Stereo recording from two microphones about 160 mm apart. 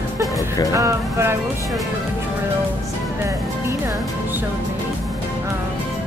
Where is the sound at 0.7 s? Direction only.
15° right (ahead or behind).